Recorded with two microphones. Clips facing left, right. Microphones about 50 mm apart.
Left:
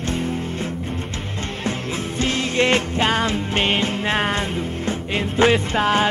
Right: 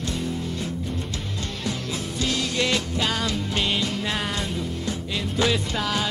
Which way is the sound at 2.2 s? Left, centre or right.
Left.